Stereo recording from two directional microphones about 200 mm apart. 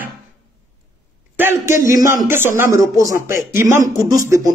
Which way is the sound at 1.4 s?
10° right (ahead or behind).